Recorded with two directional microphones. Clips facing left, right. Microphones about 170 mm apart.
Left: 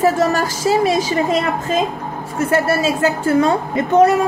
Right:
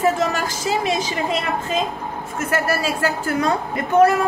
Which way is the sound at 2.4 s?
30° left (ahead or behind).